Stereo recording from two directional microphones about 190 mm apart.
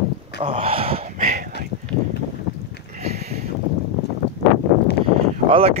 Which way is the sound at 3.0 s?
35° right (ahead or behind).